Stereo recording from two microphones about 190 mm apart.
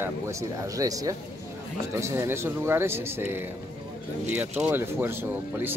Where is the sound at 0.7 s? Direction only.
20° right (ahead or behind).